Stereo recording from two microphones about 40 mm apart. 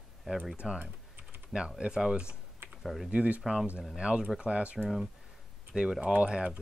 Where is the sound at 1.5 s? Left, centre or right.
Centre.